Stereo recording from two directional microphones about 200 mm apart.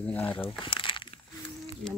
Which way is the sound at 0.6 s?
25° left (ahead or behind).